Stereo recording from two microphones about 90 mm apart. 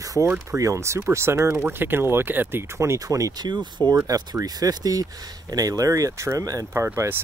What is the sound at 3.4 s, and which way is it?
Speech, 55° right (ahead or behind).